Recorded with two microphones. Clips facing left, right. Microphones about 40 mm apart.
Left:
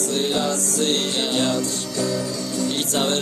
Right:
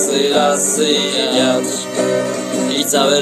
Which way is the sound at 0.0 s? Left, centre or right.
Right.